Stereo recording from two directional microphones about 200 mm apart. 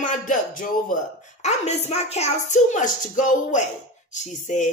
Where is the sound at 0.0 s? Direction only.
40° left (ahead or behind).